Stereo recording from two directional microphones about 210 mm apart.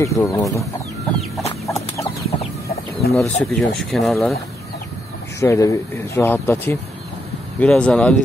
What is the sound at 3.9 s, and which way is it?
Speech, centre (ahead or behind).